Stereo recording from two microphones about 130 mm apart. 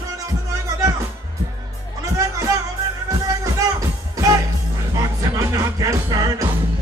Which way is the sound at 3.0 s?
25° right (ahead or behind).